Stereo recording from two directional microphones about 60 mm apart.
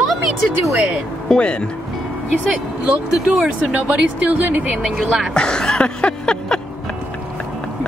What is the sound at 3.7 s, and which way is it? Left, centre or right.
Speech, right.